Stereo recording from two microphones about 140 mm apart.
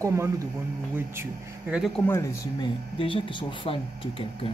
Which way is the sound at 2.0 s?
15° left (ahead or behind).